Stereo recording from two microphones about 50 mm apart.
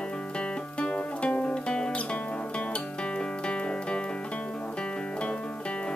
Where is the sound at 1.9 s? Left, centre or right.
Left.